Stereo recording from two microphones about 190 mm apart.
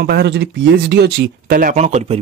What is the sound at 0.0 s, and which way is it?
Speech, 60° right (ahead or behind).